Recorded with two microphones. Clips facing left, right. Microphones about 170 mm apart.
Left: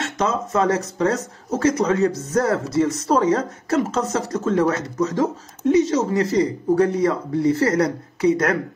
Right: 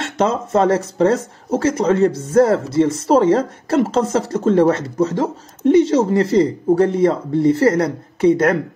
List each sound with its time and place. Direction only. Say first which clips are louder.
0.5 s speech: right 4 dB; 30° right (ahead or behind)